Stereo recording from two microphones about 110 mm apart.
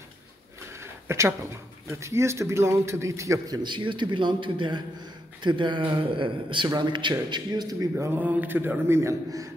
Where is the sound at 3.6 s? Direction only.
45° right (ahead or behind).